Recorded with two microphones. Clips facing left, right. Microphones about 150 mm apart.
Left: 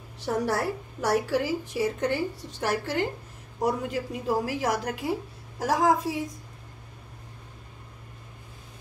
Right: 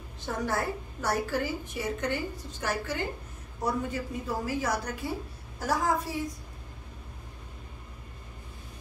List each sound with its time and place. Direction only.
0.2 s a woman's voice: 80° left